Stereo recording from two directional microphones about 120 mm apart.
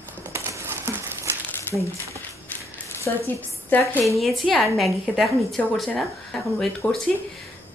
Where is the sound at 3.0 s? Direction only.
20° left (ahead or behind).